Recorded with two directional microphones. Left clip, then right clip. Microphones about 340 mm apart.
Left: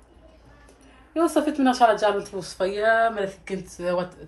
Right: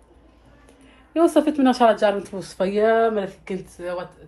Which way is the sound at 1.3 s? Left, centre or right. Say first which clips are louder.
Right 3 dB; centre.